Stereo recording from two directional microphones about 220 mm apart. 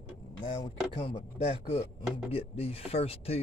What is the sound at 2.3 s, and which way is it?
Speech, 25° left (ahead or behind).